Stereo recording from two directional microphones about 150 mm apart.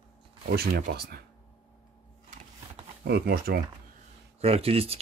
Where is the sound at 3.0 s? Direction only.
90° right.